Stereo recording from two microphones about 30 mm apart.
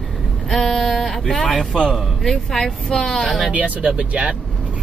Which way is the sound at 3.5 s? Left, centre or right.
Right.